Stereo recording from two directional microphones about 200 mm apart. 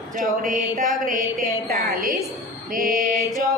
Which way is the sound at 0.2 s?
40° right (ahead or behind).